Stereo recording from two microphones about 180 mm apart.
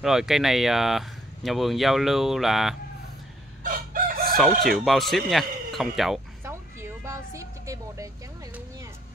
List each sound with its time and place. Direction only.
0.0 s speech: 5° right (ahead or behind)
3.6 s chicken: 50° right (ahead or behind)
4.6 s speech: centre (ahead or behind)
6.4 s a sound: 15° right (ahead or behind)